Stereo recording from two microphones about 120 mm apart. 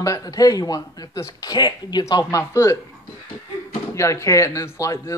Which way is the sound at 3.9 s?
25° left (ahead or behind).